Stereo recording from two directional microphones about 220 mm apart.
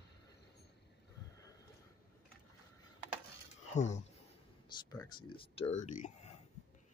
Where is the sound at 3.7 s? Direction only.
30° left (ahead or behind).